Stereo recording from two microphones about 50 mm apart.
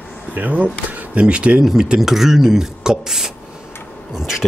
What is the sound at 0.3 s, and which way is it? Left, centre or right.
Speech, right.